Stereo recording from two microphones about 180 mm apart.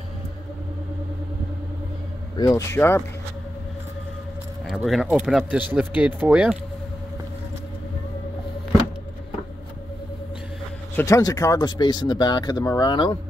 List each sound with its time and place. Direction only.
2.3 s speech: 20° left (ahead or behind)
4.6 s speech: centre (ahead or behind)
11.0 s speech: 20° left (ahead or behind)